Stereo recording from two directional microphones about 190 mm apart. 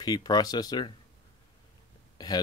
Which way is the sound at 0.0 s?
20° left (ahead or behind).